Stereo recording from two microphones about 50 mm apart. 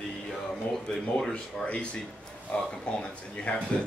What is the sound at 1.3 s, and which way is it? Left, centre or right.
Speech, left.